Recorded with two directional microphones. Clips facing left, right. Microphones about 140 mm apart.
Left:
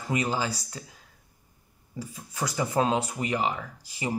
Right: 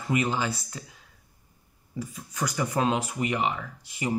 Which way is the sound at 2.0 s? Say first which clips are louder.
Right 1 dB; 30° left (ahead or behind).